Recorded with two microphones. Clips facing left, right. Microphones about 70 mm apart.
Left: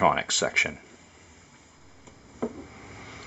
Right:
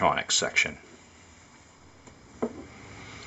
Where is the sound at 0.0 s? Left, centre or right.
Centre.